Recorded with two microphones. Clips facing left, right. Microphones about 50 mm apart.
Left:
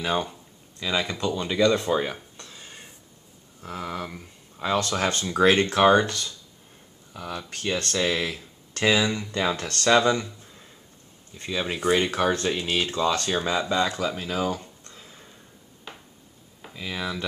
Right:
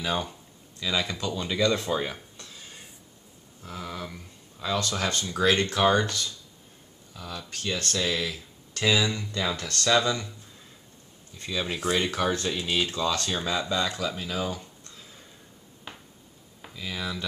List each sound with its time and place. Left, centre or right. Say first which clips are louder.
0.0 s speech: left 3 dB; centre
3.6 s speech: left 4 dB; left
9.0 s speech: left 3 dB; centre
9.3 s speech: left 4 dB; left
11.3 s speech: left 2 dB; centre
11.8 s speech: left 4 dB; centre
12.6 s speech: left 1 dB; centre
12.9 s speech: left 4 dB; centre
13.9 s a sound: left 3 dB; centre
16.7 s speech: left 3 dB; centre